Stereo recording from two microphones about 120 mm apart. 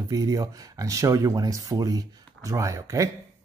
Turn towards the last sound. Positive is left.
turn(degrees=-25)  # may be behind; listen again after turning